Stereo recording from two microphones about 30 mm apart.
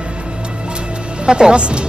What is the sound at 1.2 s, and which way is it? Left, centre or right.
Speech, right.